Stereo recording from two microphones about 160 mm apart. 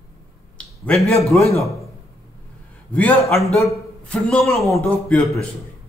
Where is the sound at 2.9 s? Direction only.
10° left (ahead or behind).